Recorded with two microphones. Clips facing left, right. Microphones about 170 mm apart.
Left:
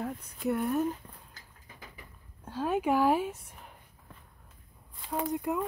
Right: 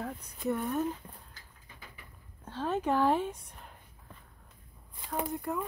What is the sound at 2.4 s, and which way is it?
Speech, 10° left (ahead or behind).